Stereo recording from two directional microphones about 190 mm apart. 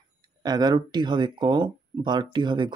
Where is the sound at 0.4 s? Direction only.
20° right (ahead or behind).